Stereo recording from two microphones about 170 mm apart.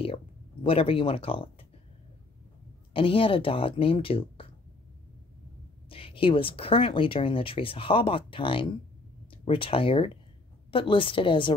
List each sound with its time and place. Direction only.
0.7 s speech: 30° left (ahead or behind)
2.9 s speech: 30° left (ahead or behind)
5.9 s speech: 35° left (ahead or behind)